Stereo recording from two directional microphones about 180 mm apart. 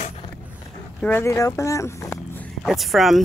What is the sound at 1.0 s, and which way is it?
Speech, 15° left (ahead or behind).